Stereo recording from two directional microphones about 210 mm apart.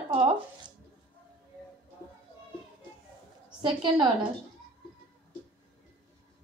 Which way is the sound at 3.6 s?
20° right (ahead or behind).